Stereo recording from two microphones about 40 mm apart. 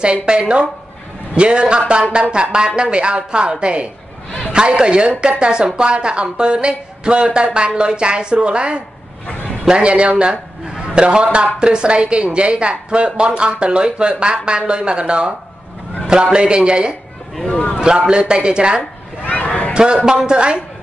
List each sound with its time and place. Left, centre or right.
0.2 s a woman's voice: right
17.5 s speech: left
17.7 s a woman's voice: right
18.8 s a sound: left
19.7 s a man's voice: right